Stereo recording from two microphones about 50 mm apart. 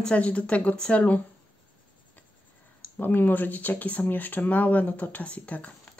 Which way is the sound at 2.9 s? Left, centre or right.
Left.